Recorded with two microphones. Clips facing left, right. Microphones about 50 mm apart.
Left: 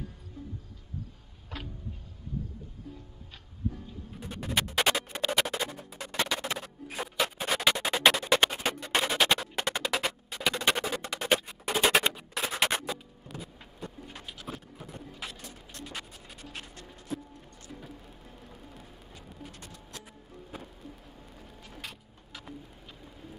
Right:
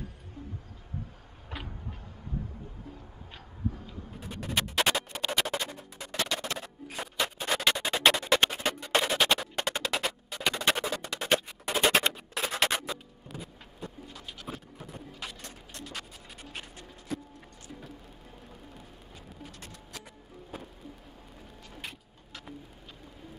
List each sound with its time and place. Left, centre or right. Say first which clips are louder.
1.5 s a sound: even; right
4.4 s music: even; centre
14.2 s a sound: right 1 dB; centre
15.8 s music: even; centre
16.4 s music: even; centre
17.1 s music: even; right
17.6 s music: even; centre
21.4 s vehicle: even; centre
22.3 s music: even; centre